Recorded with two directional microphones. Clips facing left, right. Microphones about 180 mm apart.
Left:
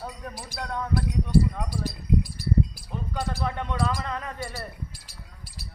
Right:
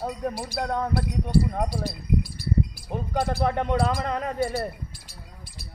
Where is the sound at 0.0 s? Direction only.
30° right (ahead or behind); by 1.9 s 50° right (ahead or behind).